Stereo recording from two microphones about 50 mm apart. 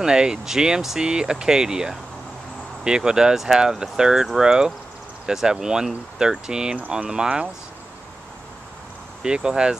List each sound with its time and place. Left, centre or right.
0.0 s speech: centre
9.2 s speech: centre